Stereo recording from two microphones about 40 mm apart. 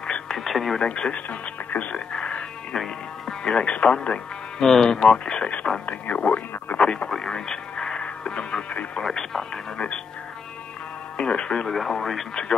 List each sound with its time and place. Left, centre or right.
0.0 s radio: left
0.4 s speech: centre
0.7 s speech: left
2.7 s music: centre
3.6 s speech: left
4.6 s speech: centre; by 6.8 s left
6.8 s speech: left
7.1 s radio: centre
9.0 s speech: centre
11.1 s speech: left
11.6 s speech: centre